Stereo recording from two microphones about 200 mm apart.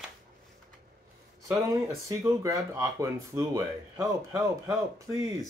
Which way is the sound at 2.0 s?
15° right (ahead or behind).